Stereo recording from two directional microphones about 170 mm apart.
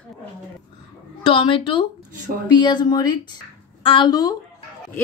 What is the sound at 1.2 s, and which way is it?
Speech, 30° left (ahead or behind).